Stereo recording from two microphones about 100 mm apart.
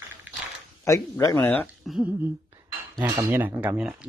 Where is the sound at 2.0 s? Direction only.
20° right (ahead or behind).